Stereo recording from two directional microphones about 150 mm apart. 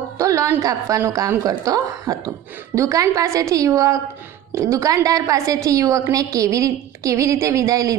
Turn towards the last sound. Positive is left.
turn(degrees=-20)  # may be behind; listen again after turning